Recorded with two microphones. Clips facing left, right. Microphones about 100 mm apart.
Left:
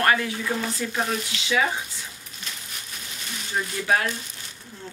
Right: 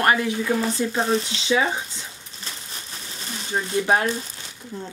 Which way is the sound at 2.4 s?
30° right (ahead or behind).